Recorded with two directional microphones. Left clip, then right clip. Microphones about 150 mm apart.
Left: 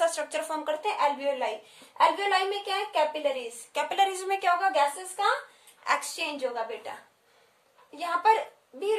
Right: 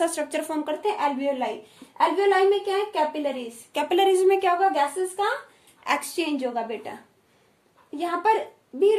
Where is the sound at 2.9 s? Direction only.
20° right (ahead or behind).